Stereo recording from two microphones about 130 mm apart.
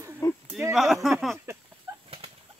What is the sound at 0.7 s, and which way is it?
Speech, 5° right (ahead or behind).